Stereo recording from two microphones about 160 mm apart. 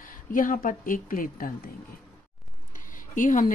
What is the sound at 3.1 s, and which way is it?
Speech, 55° left (ahead or behind).